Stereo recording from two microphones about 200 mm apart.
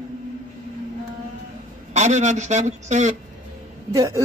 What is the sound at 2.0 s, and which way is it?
Speech, 35° right (ahead or behind).